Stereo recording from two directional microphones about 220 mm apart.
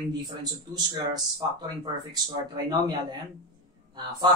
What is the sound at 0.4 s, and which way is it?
A man's voice, 20° right (ahead or behind).